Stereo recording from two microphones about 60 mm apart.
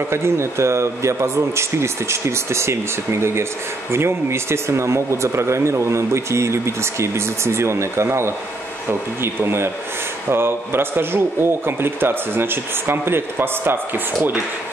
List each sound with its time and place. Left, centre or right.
0.1 s a man's voice: right